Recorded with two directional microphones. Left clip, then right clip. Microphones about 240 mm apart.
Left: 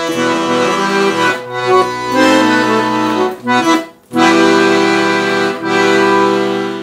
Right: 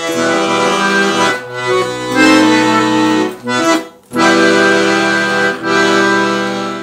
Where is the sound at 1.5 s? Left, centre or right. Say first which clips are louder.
Left 3 dB; centre.